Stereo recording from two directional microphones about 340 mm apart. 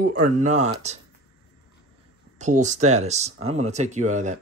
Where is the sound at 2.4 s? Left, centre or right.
Right.